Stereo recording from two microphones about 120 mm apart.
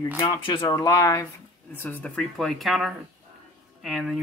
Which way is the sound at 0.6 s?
30° left (ahead or behind).